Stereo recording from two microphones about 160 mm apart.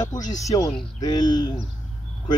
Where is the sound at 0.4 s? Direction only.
20° left (ahead or behind).